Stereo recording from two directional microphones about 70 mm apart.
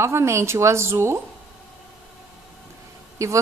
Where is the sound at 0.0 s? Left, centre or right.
Right.